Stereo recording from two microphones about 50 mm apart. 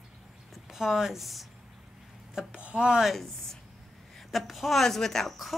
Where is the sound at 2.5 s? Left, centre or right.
Right.